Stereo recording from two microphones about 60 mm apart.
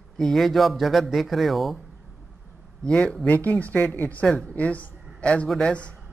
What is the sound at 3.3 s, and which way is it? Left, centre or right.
Speech, left.